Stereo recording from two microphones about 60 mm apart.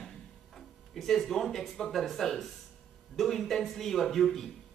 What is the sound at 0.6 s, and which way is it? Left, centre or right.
A man's voice, centre.